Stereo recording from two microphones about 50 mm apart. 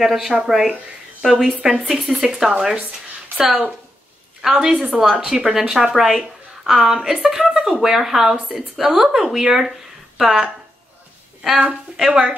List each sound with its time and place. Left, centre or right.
0.0 s speech: centre
2.2 s a woman's voice: centre
12.1 s speech: right